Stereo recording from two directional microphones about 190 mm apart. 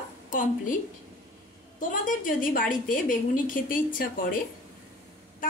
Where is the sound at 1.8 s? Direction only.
45° left (ahead or behind).